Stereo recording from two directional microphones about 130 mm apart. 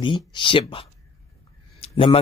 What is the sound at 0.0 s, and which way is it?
Speech, 40° left (ahead or behind).